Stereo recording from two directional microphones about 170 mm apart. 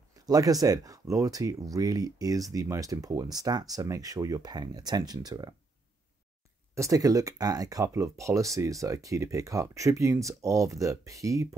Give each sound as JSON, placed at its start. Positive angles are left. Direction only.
{"t": 0.1, "sound": "speech", "side_deg": -20}
{"t": 6.7, "sound": "speech", "side_deg": -20}